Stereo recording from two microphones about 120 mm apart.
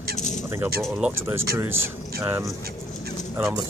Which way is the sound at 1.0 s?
20° right (ahead or behind).